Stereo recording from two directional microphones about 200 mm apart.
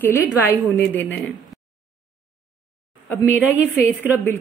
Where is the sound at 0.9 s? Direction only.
10° left (ahead or behind).